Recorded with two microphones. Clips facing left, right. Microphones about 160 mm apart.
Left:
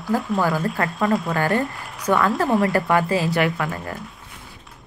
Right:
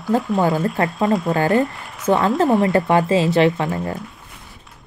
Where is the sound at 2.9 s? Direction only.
25° right (ahead or behind).